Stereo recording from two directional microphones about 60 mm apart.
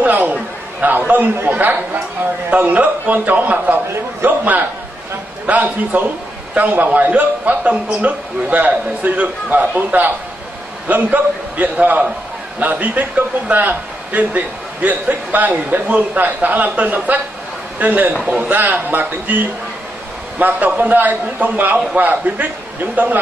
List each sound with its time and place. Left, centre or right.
0.0 s chatter: right
1.5 s a man's voice: right
18.2 s a man's voice: centre
18.5 s a man's voice: right